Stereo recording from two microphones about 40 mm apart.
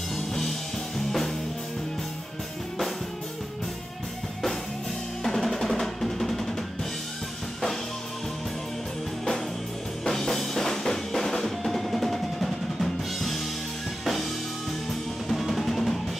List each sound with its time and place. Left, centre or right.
0.3 s music: centre
5.2 s drum: centre
10.0 s music: centre
15.2 s drum: centre